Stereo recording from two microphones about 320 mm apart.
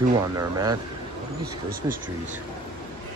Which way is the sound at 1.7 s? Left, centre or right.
Right.